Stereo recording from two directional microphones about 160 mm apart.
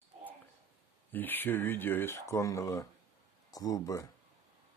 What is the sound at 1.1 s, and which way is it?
Speech, 10° left (ahead or behind).